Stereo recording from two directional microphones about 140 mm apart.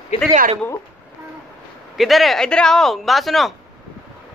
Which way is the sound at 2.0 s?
Centre (ahead or behind).